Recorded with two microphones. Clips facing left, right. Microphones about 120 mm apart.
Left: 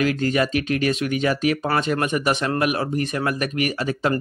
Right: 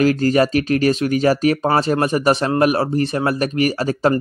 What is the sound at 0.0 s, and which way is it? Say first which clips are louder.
Speech: right 6 dB; 35° right (ahead or behind).